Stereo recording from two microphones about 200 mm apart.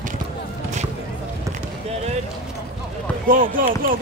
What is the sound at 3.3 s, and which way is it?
Speech, 45° right (ahead or behind).